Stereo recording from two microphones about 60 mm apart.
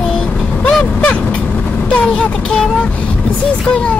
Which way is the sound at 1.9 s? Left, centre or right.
Centre.